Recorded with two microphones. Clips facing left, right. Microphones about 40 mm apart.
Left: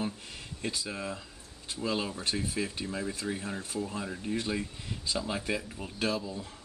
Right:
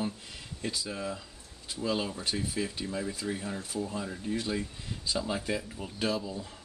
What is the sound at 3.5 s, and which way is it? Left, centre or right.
Speech, centre.